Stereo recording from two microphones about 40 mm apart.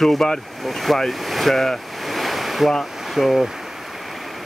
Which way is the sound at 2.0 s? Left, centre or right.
Centre.